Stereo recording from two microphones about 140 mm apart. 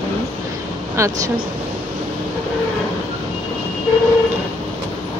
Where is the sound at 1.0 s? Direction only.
20° right (ahead or behind).